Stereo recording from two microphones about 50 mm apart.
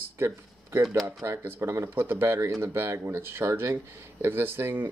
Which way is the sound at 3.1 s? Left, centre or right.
Right.